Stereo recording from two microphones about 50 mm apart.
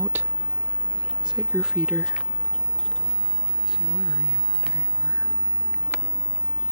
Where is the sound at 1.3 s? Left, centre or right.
Centre.